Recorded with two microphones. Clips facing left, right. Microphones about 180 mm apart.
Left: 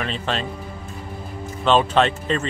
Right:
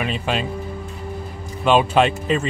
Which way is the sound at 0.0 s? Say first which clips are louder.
Right 2 dB; 10° right (ahead or behind).